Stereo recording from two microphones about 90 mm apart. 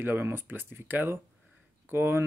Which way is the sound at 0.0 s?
25° right (ahead or behind).